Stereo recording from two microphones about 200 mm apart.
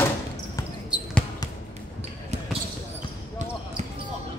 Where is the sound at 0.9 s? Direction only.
5° right (ahead or behind).